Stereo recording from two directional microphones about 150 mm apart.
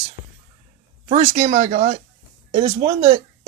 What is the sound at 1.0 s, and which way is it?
Speech, 45° right (ahead or behind).